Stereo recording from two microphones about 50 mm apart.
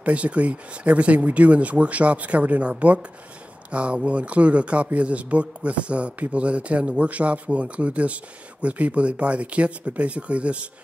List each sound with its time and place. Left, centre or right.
0.0 s speech: right